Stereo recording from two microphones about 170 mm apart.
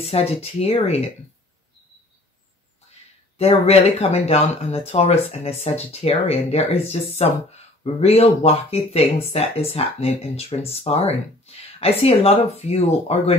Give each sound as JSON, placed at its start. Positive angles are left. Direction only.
{"t": 0.0, "sound": "speech", "side_deg": 35}
{"t": 3.3, "sound": "speech", "side_deg": 40}